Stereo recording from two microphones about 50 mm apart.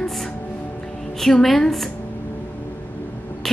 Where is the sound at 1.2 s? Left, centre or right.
Centre.